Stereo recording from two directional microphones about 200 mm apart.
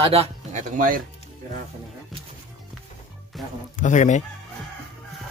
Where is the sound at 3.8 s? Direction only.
40° left (ahead or behind).